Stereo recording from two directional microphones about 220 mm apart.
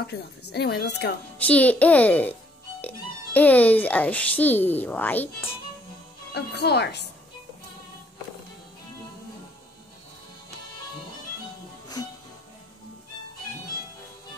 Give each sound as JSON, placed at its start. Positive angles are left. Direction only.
{"t": 0.5, "sound": "speech", "side_deg": 45}
{"t": 1.4, "sound": "a child's voice", "side_deg": 5}
{"t": 6.3, "sound": "speech", "side_deg": 50}